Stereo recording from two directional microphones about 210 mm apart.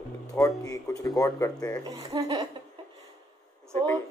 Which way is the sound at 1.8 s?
20° right (ahead or behind).